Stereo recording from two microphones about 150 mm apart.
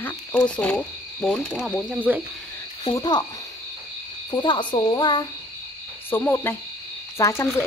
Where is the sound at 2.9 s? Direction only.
25° left (ahead or behind).